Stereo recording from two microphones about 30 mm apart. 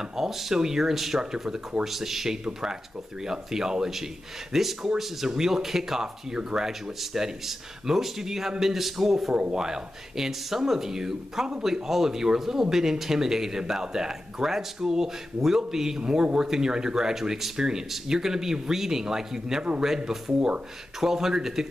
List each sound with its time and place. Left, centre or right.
0.0 s speech: centre
1.5 s speech: right
1.9 s speech: centre
2.4 s speech: right
6.3 s speech: right
9.3 s speech: right
9.6 s speech: centre
16.0 s speech: right
21.0 s speech: centre